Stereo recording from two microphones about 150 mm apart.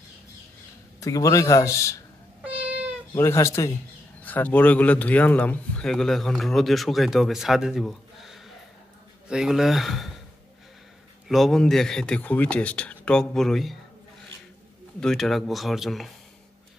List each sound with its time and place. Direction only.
1.0 s a man's voice: 20° left (ahead or behind)
2.6 s cat: 10° right (ahead or behind)
3.2 s a man's voice: 20° left (ahead or behind); by 10.1 s centre (ahead or behind)
11.2 s a man's voice: centre (ahead or behind)
15.0 s a man's voice: 5° left (ahead or behind)